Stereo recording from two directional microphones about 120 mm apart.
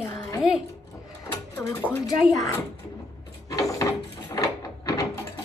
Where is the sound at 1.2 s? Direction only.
20° left (ahead or behind).